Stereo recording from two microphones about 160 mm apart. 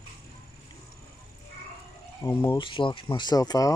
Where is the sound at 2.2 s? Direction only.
20° left (ahead or behind).